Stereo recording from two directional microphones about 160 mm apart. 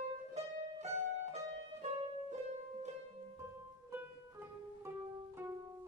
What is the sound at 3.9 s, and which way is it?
Music, 15° right (ahead or behind).